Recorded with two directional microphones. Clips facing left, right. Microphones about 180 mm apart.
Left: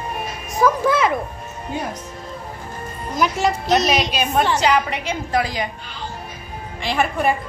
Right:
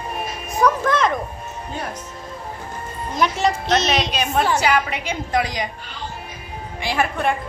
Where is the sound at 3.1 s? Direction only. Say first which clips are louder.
Even; centre (ahead or behind).